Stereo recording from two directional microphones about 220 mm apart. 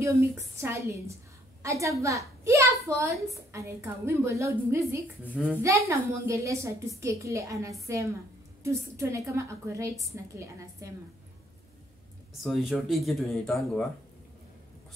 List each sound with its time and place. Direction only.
0.0 s a woman's voice: 10° right (ahead or behind)
5.2 s a child's voice: 10° left (ahead or behind)
5.5 s a woman's voice: 15° right (ahead or behind)
12.4 s speech: centre (ahead or behind)